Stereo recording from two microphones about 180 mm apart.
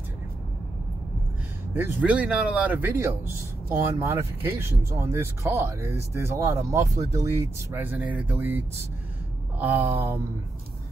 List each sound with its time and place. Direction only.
1.8 s speech: 10° right (ahead or behind)